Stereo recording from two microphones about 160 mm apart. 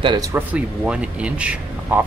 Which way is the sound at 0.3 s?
10° right (ahead or behind).